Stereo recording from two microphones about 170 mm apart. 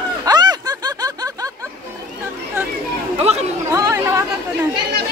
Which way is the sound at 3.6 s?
20° right (ahead or behind).